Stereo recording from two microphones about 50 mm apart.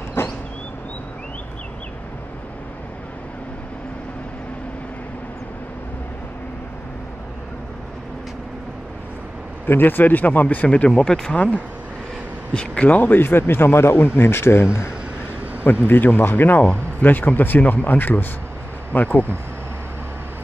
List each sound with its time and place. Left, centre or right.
0.2 s a sound: left
9.7 s a man's voice: left
15.9 s speech: left